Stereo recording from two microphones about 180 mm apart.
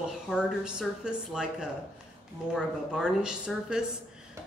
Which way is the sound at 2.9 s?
5° right (ahead or behind).